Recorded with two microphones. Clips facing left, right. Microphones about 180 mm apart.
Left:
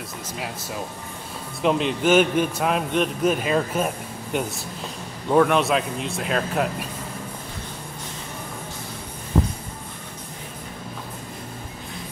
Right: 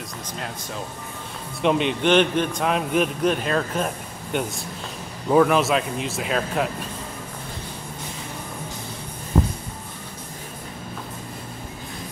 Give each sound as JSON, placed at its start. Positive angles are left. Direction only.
{"t": 1.6, "sound": "a man's voice", "side_deg": 0}